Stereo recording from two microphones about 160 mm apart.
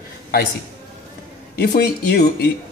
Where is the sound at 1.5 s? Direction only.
80° left.